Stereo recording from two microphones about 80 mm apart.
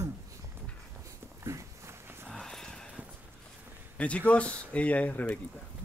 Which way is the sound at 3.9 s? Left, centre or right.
Centre.